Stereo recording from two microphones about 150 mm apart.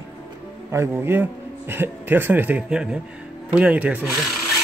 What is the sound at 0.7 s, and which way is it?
Speech, 15° right (ahead or behind).